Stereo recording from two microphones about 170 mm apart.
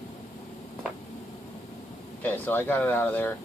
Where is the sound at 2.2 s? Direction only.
10° left (ahead or behind).